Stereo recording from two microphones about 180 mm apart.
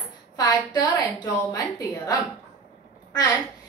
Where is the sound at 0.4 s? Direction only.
20° left (ahead or behind).